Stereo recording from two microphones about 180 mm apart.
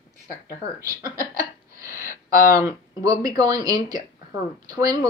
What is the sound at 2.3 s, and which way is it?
Speech, 55° left (ahead or behind).